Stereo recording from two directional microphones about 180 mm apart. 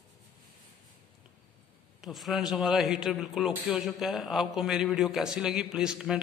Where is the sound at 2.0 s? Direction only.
Centre (ahead or behind).